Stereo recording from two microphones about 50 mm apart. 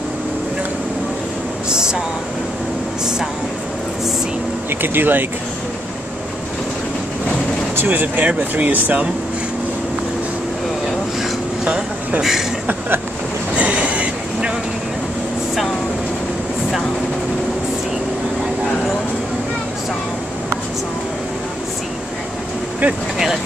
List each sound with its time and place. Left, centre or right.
1.7 s a sound: centre
4.6 s speech: right
7.7 s speech: right
11.6 s vehicle: right
12.2 s a man's voice: centre
13.6 s vehicle: right